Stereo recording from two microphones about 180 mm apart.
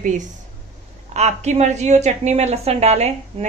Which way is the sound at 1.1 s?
40° right (ahead or behind).